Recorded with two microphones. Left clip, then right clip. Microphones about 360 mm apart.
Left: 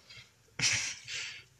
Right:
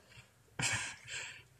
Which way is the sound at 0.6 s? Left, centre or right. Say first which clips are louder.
Left 6 dB; centre.